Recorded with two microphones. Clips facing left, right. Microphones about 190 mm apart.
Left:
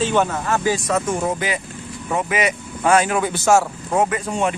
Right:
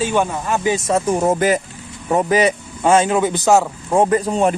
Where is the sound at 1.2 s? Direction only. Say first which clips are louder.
Right 7 dB; 45° right (ahead or behind).